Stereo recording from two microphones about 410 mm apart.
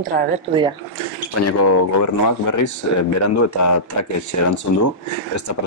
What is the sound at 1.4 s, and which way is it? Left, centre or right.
Speech, left.